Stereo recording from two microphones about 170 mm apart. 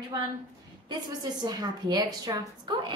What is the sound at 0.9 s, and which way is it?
A woman's voice, 25° right (ahead or behind).